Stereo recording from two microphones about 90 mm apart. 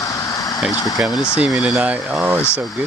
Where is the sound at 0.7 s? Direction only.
45° left (ahead or behind).